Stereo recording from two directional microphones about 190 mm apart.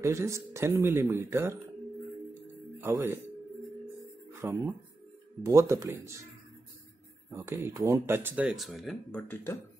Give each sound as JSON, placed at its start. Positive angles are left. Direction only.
{"t": 0.0, "sound": "speech", "side_deg": -15}
{"t": 2.8, "sound": "speech", "side_deg": -15}
{"t": 4.3, "sound": "speech", "side_deg": -15}
{"t": 7.2, "sound": "speech", "side_deg": -15}